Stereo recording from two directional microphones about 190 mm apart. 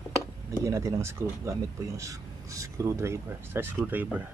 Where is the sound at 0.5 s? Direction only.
15° right (ahead or behind).